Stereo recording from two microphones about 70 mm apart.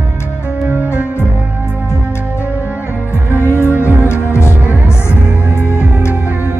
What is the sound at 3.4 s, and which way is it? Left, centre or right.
Music, left.